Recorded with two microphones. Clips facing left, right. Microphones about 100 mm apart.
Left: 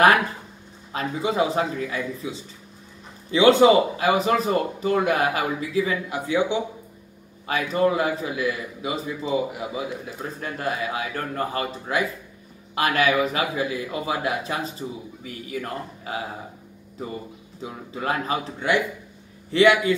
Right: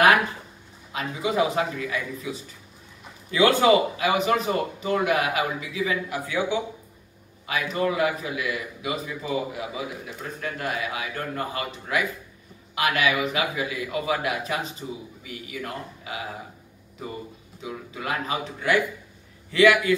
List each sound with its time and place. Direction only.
0.9 s a man's voice: 30° left (ahead or behind)
3.9 s a man's voice: 35° left (ahead or behind)
6.0 s a man's voice: 25° left (ahead or behind)
7.4 s a man's voice: 35° left (ahead or behind)
17.6 s a man's voice: 35° left (ahead or behind)